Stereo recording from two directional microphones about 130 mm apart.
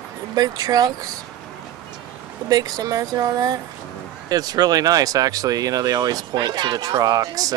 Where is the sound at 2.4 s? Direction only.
30° right (ahead or behind).